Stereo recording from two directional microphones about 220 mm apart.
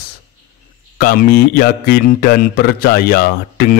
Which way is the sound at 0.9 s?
45° left (ahead or behind).